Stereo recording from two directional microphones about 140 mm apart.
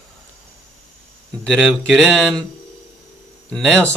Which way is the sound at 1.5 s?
5° left (ahead or behind).